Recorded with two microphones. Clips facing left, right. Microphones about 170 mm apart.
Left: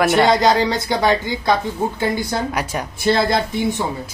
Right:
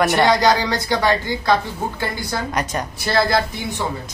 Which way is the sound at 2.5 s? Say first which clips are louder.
Even; 5° left (ahead or behind).